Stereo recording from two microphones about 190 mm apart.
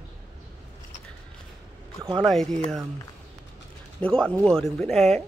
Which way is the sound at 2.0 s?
30° right (ahead or behind).